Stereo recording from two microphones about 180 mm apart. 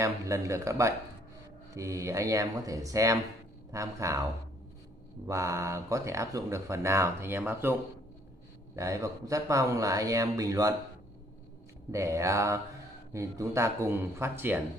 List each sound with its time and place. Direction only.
0.0 s speech: 15° right (ahead or behind)
11.9 s speech: 15° right (ahead or behind)